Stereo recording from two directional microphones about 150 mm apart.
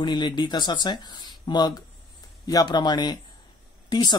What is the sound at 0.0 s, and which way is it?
Speech, 30° left (ahead or behind).